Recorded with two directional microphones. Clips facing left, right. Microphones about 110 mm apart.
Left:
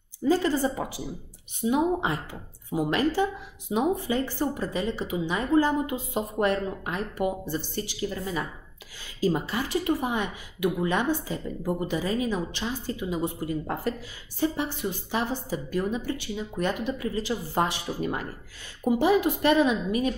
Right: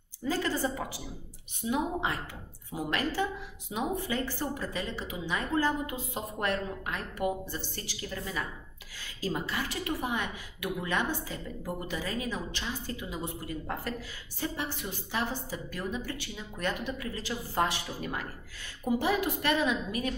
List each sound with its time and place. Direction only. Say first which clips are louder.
0.2 s a woman's voice: left 7 dB; 20° left (ahead or behind)
9.2 s a woman's voice: left 7 dB; 20° left (ahead or behind)
14.6 s a woman's voice: left 6 dB; 25° left (ahead or behind)